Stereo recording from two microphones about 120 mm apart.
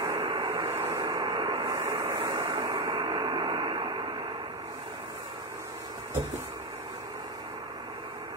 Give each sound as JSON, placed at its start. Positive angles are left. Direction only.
{"t": 0.0, "sound": "vehicle", "side_deg": -35}
{"t": 1.9, "sound": "vehicle", "side_deg": -30}
{"t": 2.1, "sound": "vehicle", "side_deg": -40}
{"t": 2.8, "sound": "radio", "side_deg": -40}